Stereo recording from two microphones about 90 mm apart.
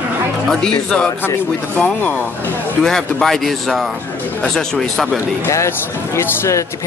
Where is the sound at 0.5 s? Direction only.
5° left (ahead or behind).